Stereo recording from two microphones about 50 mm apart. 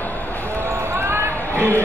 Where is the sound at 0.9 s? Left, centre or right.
Right.